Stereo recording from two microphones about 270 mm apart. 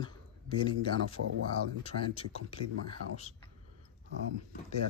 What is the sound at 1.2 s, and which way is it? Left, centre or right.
Speech, right.